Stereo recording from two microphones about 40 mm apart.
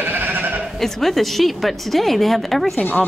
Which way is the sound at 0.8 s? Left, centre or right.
Centre.